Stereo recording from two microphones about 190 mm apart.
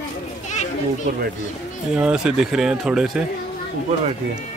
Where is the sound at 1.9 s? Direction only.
5° right (ahead or behind).